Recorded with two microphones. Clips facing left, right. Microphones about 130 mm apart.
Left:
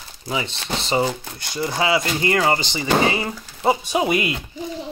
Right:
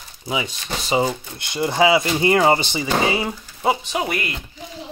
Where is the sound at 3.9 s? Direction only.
20° left (ahead or behind).